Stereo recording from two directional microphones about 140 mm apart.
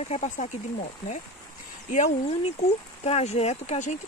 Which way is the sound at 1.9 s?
55° left (ahead or behind).